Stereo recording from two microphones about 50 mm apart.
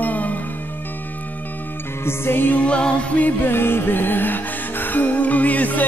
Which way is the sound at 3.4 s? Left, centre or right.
Left.